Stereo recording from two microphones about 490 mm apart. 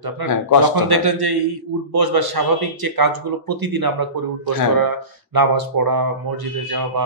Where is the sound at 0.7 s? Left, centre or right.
Right.